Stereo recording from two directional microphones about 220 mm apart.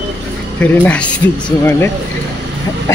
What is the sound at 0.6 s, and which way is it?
Speech, 5° left (ahead or behind).